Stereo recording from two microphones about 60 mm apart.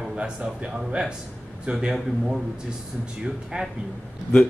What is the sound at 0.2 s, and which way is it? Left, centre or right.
Speech, centre.